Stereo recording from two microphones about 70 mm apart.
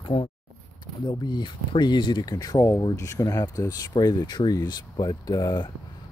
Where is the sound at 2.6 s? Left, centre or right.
Left.